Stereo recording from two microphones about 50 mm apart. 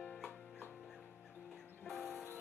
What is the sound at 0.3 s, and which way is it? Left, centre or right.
Music, left.